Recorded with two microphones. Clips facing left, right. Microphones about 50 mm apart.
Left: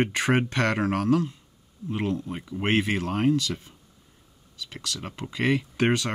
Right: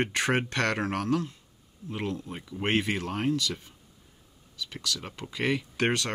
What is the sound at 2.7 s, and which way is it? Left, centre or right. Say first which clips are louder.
Speech: left 3 dB; left.